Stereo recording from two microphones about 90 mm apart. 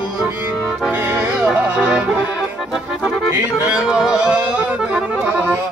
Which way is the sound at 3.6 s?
10° right (ahead or behind).